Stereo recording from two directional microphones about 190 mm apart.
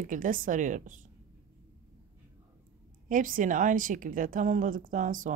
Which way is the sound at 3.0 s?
45° right (ahead or behind).